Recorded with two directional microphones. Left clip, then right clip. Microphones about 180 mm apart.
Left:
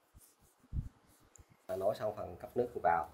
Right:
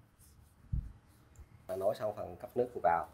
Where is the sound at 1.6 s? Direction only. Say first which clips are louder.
Right 1 dB; 15° right (ahead or behind).